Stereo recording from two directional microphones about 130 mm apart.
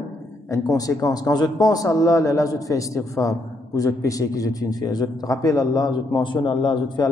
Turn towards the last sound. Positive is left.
turn(degrees=35)  # may be behind; listen again after turning